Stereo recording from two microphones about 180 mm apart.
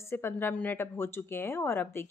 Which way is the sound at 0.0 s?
15° left (ahead or behind).